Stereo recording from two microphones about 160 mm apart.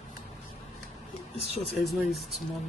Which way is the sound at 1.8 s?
Centre (ahead or behind).